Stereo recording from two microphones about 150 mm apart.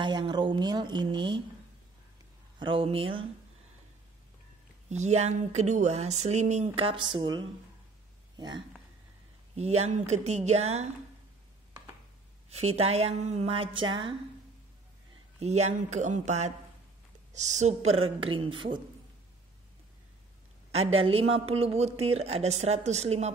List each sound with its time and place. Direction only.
0.0 s speech: 30° right (ahead or behind)
2.6 s a woman's voice: 35° right (ahead or behind)
4.8 s a woman's voice: 50° right (ahead or behind); by 8.6 s 30° right (ahead or behind)
9.6 s speech: 45° right (ahead or behind)
12.4 s speech: 45° right (ahead or behind)
15.3 s a woman's voice: 45° right (ahead or behind)
20.7 s speech: 40° right (ahead or behind)